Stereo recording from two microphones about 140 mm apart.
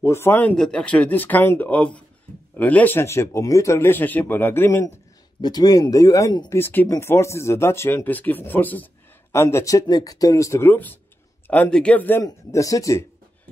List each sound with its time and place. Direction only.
0.0 s speech: 20° left (ahead or behind)
6.5 s speech: 15° left (ahead or behind)
12.3 s speech: 25° left (ahead or behind)